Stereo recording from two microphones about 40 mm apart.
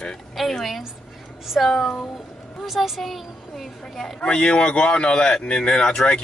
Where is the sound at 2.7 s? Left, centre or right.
Centre.